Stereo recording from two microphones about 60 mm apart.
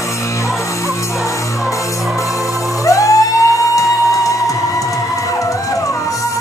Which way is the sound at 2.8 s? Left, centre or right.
Left.